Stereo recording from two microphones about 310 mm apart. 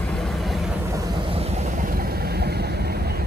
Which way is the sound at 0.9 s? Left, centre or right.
Centre.